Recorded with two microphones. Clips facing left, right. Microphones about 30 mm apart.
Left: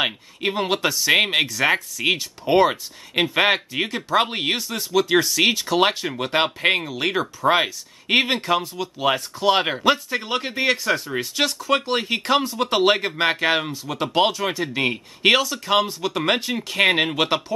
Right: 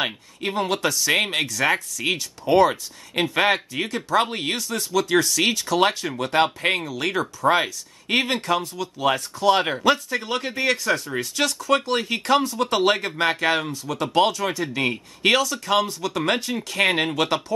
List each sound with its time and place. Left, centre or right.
0.0 s speech: centre